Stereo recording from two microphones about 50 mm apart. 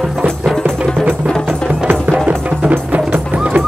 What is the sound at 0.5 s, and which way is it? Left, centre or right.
Music, centre.